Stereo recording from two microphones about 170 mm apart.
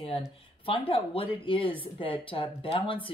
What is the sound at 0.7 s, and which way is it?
A woman's voice, 35° left (ahead or behind).